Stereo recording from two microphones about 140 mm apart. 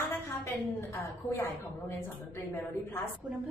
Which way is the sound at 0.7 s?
20° left (ahead or behind).